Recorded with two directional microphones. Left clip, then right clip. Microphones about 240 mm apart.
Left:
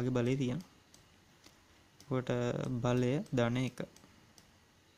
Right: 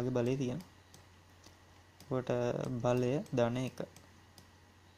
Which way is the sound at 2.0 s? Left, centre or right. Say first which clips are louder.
Right 1 dB; left.